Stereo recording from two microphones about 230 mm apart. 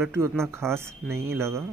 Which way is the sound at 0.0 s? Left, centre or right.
Centre.